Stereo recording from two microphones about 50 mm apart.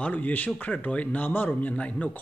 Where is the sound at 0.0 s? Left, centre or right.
Left.